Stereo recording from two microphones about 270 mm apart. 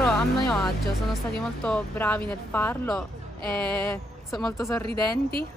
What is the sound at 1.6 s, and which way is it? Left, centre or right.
Speech, centre.